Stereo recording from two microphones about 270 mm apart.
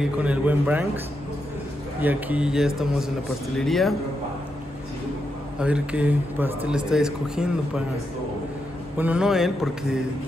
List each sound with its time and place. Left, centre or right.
0.0 s a man's voice: centre
5.6 s a man's voice: centre
8.9 s a man's voice: centre